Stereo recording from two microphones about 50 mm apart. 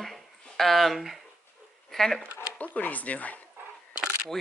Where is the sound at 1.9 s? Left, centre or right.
Centre.